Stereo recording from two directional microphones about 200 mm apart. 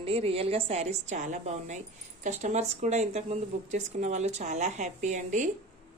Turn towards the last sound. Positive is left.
turn(degrees=-40)  # may be behind; listen again after turning